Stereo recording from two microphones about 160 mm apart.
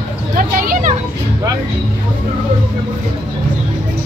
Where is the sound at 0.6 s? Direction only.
55° right (ahead or behind).